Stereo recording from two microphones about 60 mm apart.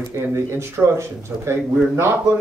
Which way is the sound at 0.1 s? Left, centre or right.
Right.